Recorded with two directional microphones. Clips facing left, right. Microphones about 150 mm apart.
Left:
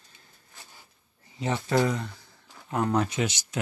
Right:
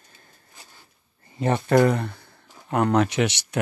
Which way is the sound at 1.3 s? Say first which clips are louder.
Right 6 dB; 55° right (ahead or behind).